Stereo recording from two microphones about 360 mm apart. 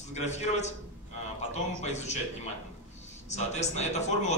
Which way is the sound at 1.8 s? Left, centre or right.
Centre.